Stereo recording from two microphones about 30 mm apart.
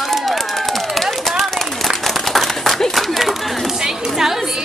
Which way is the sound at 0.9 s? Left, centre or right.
Centre.